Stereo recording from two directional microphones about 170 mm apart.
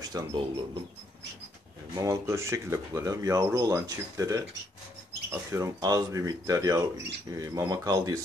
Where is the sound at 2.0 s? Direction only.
15° right (ahead or behind).